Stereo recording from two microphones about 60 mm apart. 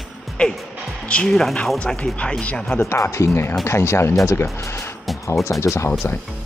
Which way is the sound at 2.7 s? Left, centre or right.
Left.